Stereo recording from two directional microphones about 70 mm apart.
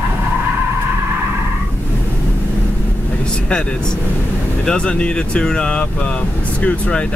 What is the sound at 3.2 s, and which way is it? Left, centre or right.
Speech, centre.